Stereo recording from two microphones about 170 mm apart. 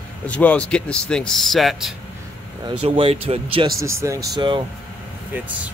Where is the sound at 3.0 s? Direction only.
35° right (ahead or behind).